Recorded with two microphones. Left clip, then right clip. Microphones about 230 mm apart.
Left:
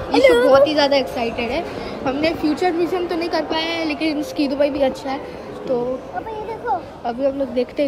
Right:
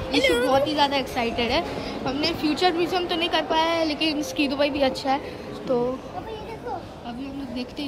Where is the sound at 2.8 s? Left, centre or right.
Centre.